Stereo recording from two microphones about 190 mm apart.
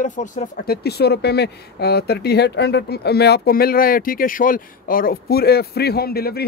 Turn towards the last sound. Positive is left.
turn(degrees=55)  # may be behind; listen again after turning